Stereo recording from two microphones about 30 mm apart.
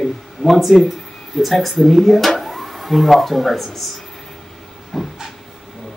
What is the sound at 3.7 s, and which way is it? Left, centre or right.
Speech, centre.